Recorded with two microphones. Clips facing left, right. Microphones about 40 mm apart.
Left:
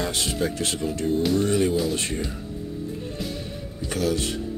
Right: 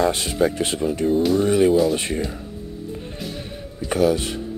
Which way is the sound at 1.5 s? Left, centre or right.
Centre.